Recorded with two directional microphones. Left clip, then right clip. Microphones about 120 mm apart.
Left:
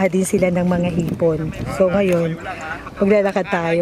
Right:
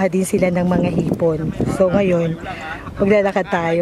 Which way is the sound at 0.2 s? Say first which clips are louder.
Even; centre (ahead or behind).